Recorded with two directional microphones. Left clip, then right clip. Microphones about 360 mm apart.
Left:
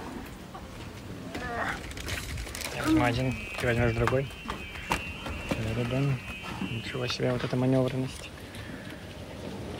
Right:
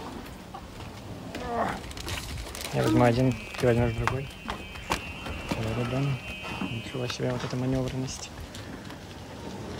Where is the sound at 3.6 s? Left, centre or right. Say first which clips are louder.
Right 2 dB; centre.